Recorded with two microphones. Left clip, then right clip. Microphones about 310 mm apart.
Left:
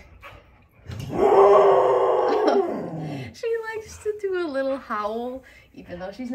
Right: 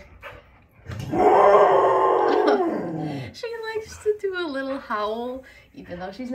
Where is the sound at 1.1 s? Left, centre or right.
Centre.